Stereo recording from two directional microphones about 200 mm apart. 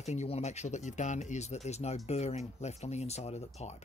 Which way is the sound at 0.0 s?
35° left (ahead or behind).